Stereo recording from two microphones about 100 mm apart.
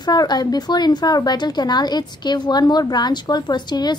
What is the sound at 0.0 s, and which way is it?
Speech, 45° left (ahead or behind).